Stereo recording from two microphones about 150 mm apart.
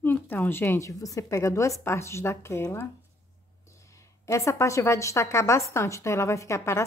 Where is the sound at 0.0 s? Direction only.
15° left (ahead or behind).